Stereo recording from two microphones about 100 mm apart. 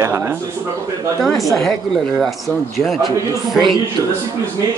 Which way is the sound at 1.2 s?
Centre (ahead or behind).